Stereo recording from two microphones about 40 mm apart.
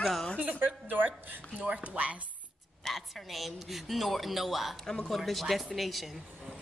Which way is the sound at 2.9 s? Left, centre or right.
Centre.